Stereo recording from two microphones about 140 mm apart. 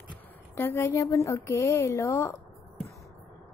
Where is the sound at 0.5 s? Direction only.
15° left (ahead or behind).